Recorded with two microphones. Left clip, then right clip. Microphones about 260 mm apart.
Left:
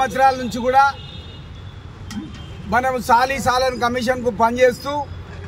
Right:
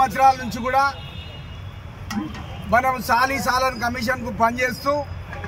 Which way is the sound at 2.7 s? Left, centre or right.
Centre.